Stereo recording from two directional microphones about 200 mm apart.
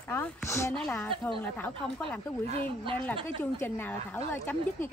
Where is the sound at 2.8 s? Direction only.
25° right (ahead or behind).